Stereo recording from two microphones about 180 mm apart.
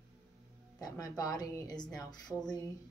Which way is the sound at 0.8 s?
20° left (ahead or behind).